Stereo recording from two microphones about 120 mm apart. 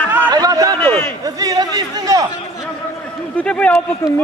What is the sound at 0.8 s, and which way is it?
Speech, 15° left (ahead or behind).